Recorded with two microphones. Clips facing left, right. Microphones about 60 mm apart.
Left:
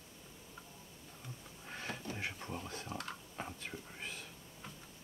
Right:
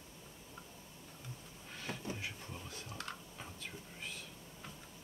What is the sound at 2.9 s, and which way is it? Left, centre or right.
Typing, left.